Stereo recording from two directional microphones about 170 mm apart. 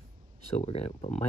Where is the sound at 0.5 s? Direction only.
40° left (ahead or behind).